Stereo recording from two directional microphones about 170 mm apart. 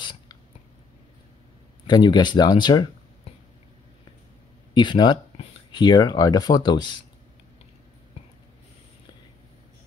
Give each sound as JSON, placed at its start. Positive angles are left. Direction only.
{"t": 0.0, "sound": "a sound", "side_deg": 25}
{"t": 1.9, "sound": "speech", "side_deg": 25}
{"t": 4.7, "sound": "speech", "side_deg": 25}